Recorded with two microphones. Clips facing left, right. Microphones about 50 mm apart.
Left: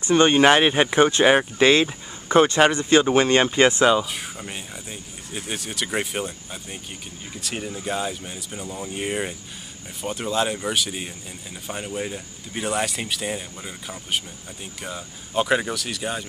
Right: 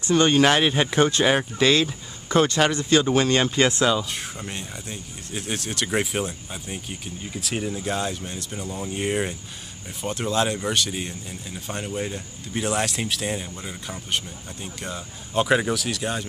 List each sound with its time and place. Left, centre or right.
0.1 s speech: left
4.1 s speech: centre